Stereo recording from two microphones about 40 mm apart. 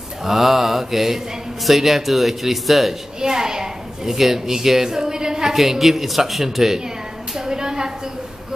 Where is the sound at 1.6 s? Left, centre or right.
Centre.